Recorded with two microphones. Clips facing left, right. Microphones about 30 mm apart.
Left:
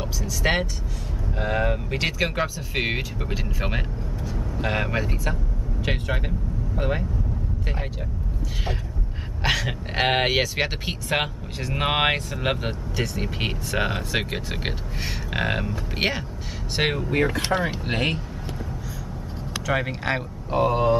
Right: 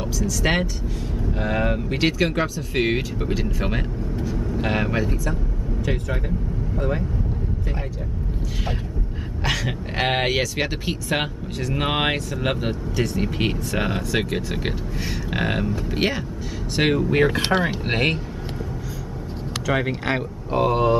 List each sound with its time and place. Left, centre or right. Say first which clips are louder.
0.0 s speech: right 2 dB; centre
1.4 s speech: right 1 dB; centre
4.4 s vehicle: right 1 dB; centre
5.9 s speech: even; left
9.4 s speech: left 1 dB; centre
17.1 s speech: right 4 dB; right
17.9 s speech: right 3 dB; centre
19.6 s speech: right 2 dB; centre